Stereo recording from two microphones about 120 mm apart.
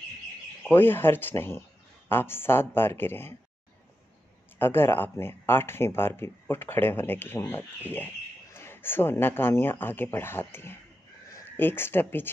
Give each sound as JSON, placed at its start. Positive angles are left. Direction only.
{"t": 0.7, "sound": "speech", "side_deg": 15}
{"t": 4.6, "sound": "speech", "side_deg": 20}